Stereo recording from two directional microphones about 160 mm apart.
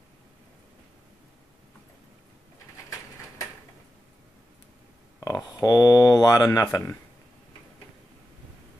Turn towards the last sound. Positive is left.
turn(degrees=15)  # may be behind; listen again after turning